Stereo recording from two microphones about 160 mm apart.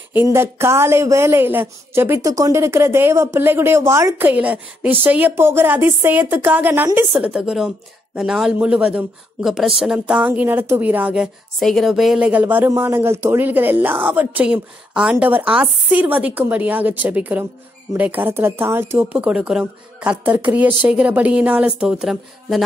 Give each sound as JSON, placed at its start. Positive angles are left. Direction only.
{"t": 0.1, "sound": "speech", "side_deg": -15}